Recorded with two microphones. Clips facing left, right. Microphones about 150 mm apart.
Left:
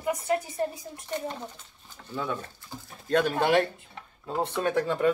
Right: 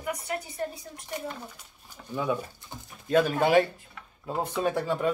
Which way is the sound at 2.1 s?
10° right (ahead or behind).